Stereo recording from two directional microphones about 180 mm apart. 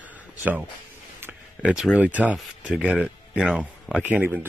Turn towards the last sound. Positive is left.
turn(degrees=-10)  # may be behind; listen again after turning